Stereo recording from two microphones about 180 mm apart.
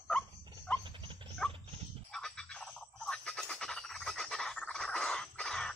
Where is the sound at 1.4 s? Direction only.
5° left (ahead or behind).